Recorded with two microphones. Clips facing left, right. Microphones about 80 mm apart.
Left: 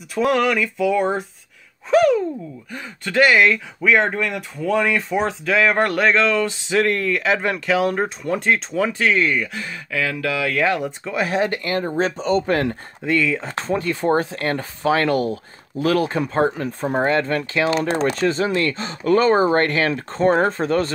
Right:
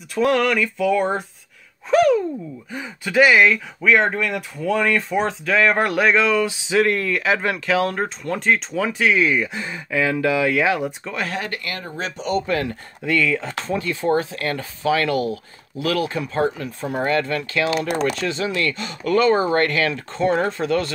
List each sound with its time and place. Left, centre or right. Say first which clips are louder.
0.1 s speech: even; centre
9.5 s speech: right 2 dB; right
10.5 s speech: even; centre
11.1 s speech: left 8 dB; centre; by 12.7 s left
13.0 s speech: even; left
13.7 s speech: left 2 dB; left